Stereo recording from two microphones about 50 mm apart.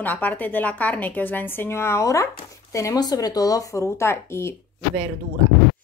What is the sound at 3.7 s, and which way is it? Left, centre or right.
Speech, left.